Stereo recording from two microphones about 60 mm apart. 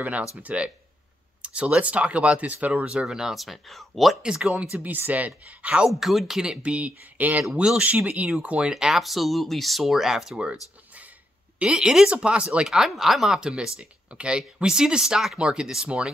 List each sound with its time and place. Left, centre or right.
0.0 s speech: right; by 4.2 s centre
4.2 s speech: centre
4.8 s speech: right
5.9 s speech: centre
11.6 s speech: centre